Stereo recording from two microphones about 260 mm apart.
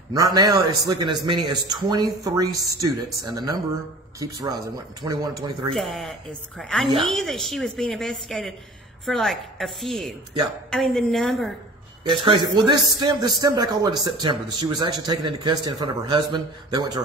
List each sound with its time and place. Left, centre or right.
0.1 s a man's voice: centre
5.8 s a woman's voice: centre
12.0 s a man's voice: centre